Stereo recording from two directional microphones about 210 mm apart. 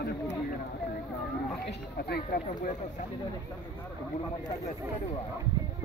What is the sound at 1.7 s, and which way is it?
Speech, 50° left (ahead or behind).